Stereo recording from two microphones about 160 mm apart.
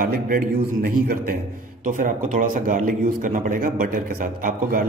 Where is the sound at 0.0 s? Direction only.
65° right (ahead or behind).